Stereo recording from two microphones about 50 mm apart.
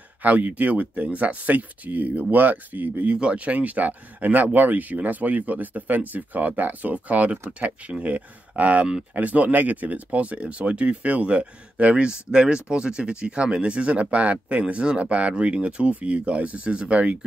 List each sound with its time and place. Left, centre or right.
0.2 s speech: right
3.2 s speech: right